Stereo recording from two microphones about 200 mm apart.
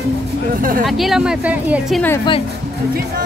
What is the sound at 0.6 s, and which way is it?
Speech, 45° right (ahead or behind).